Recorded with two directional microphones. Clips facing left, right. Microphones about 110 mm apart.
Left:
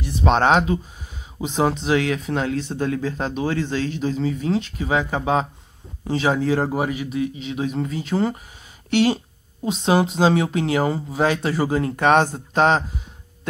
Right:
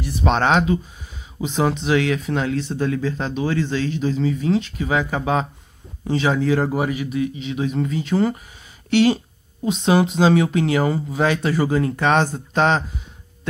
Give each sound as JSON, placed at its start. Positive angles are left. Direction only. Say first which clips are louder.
{"t": 0.3, "sound": "speech", "louder": "left 1 dB", "side_deg": 40}
{"t": 4.8, "sound": "speech", "louder": "left 2 dB", "side_deg": 25}
{"t": 6.0, "sound": "speech", "louder": "right 1 dB", "side_deg": 35}
{"t": 7.3, "sound": "speech", "louder": "right 2 dB", "side_deg": 40}
{"t": 12.0, "sound": "speech", "louder": "left 5 dB", "side_deg": 45}